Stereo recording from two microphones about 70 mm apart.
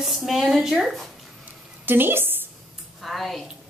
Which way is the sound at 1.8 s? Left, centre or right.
Right.